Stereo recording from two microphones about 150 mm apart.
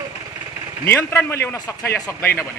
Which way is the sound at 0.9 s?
15° left (ahead or behind).